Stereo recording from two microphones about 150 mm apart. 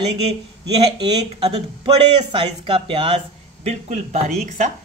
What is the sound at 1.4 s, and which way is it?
Speech, 40° right (ahead or behind).